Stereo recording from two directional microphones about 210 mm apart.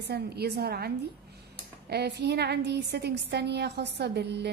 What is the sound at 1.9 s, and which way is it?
A woman's voice, 50° right (ahead or behind).